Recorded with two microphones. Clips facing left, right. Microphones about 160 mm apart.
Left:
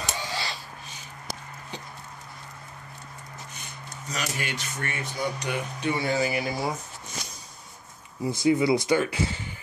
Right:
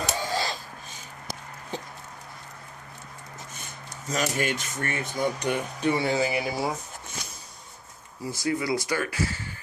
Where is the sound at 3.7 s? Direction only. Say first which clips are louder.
Right 5 dB; 45° right (ahead or behind).